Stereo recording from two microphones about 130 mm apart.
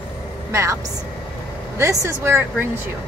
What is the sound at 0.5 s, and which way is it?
Speech, 20° right (ahead or behind).